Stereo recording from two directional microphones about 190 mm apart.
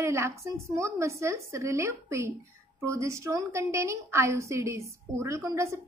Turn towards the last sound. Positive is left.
turn(degrees=-15)  # may be behind; listen again after turning